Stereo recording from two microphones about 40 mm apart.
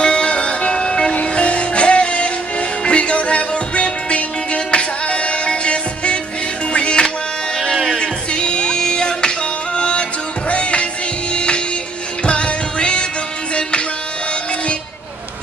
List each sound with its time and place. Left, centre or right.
0.0 s music: left
7.7 s music: centre
8.0 s music: left